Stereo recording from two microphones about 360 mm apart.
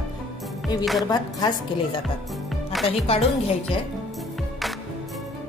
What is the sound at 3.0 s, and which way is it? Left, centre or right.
Speech, centre.